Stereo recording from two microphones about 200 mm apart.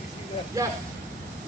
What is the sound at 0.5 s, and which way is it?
Speech, 15° right (ahead or behind).